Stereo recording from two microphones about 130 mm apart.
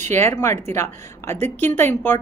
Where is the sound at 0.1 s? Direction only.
20° left (ahead or behind).